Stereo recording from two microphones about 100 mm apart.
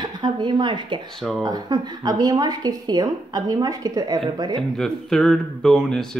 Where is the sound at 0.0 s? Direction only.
50° right (ahead or behind).